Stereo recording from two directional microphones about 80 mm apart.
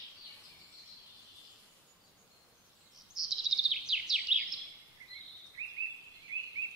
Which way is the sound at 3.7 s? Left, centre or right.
Centre.